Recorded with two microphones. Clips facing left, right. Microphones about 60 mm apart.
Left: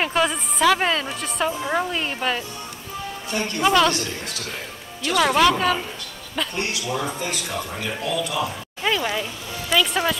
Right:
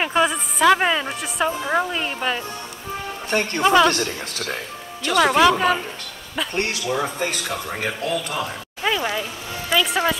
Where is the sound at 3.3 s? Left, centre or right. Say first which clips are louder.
Right 3 dB; right.